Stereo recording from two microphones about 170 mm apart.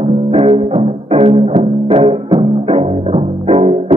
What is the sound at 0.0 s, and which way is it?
Music, 35° right (ahead or behind).